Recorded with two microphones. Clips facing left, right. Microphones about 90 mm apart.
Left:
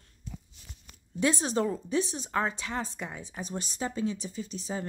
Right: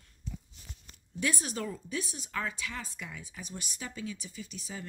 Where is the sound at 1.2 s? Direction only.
30° left (ahead or behind).